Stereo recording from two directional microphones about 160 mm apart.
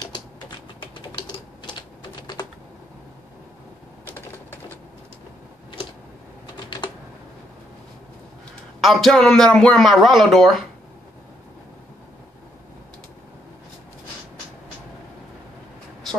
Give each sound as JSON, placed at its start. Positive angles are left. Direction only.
{"t": 0.0, "sound": "typing", "side_deg": 25}
{"t": 6.5, "sound": "typing", "side_deg": 25}
{"t": 8.8, "sound": "a man's voice", "side_deg": 0}